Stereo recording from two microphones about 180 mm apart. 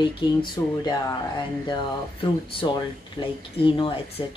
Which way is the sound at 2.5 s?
30° left (ahead or behind).